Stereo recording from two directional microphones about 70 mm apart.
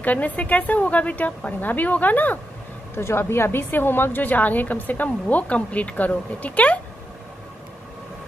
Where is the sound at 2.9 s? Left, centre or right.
Left.